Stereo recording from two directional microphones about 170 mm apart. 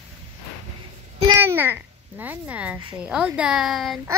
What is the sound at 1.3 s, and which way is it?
A child's voice, 15° right (ahead or behind).